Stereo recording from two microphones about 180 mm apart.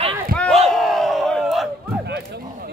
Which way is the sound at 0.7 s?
Centre (ahead or behind).